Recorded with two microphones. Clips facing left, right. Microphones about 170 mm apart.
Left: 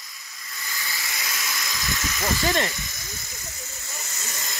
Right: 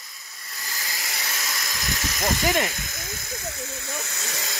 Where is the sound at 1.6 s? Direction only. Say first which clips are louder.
Even; 40° right (ahead or behind).